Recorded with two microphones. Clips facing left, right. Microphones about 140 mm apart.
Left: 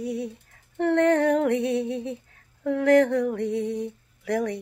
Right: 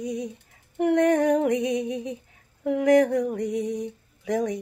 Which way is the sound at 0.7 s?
15° right (ahead or behind).